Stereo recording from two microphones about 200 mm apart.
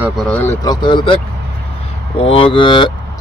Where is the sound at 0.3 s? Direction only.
10° left (ahead or behind).